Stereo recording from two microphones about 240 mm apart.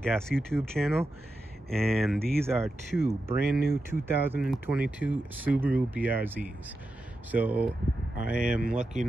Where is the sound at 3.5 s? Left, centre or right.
Right.